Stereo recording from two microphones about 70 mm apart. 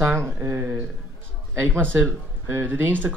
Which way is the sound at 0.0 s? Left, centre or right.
Right.